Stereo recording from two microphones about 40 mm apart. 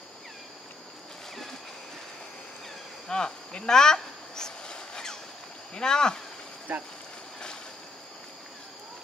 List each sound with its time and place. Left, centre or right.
3.1 s cricket: centre
5.8 s speech: centre
6.7 s speech: right